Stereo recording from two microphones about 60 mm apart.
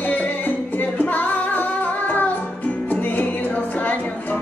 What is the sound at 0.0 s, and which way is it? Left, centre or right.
Music, left.